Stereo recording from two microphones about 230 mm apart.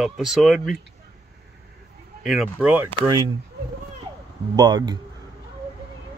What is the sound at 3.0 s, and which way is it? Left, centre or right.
Speech, right.